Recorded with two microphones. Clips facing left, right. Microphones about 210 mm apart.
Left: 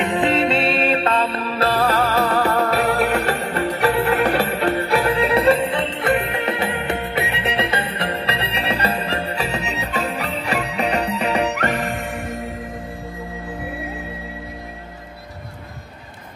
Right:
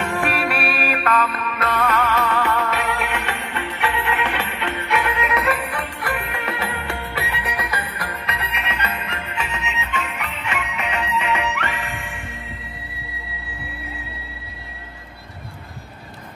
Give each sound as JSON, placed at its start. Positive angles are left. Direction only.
{"t": 0.0, "sound": "music", "side_deg": 20}